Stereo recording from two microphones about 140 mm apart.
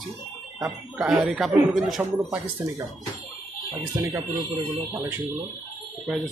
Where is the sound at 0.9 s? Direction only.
5° right (ahead or behind).